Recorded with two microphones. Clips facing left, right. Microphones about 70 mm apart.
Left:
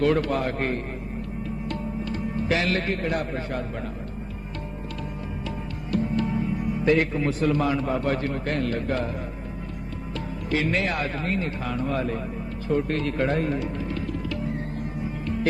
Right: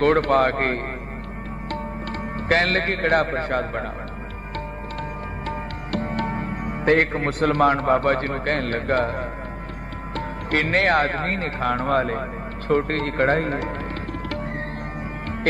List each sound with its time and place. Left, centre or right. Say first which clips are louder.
0.0 s a man's voice: right 5 dB; right
5.9 s a man's voice: left 1 dB; right